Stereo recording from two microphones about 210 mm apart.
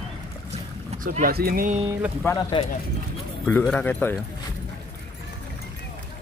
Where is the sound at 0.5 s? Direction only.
35° right (ahead or behind).